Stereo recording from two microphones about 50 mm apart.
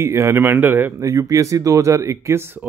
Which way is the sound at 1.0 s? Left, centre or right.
Right.